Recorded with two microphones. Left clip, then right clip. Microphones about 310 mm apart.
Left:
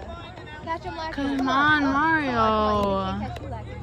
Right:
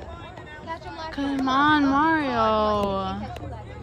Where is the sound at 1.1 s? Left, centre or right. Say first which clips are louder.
Even; centre.